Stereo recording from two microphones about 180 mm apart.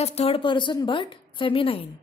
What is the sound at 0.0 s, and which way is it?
A woman's voice, 35° left (ahead or behind).